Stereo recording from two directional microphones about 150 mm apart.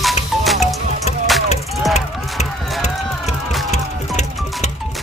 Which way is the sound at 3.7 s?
50° left (ahead or behind).